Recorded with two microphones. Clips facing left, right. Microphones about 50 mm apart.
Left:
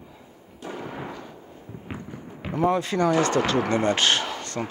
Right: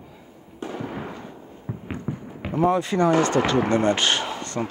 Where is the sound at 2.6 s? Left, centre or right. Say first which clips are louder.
Right 2 dB; right.